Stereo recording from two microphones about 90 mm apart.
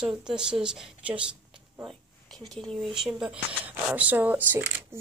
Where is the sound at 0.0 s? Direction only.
10° right (ahead or behind).